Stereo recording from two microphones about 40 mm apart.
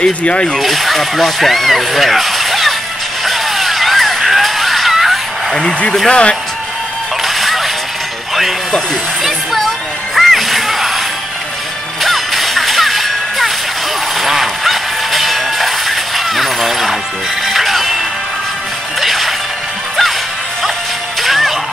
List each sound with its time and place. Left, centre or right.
0.0 s speech: left
0.6 s speech: centre
3.3 s a sound: centre
5.5 s speech: centre
7.2 s music: centre
9.2 s music: centre
10.1 s whip: centre
12.0 s music: centre
14.2 s a sound: centre
17.5 s music: centre
18.9 s whip: centre
21.2 s music: centre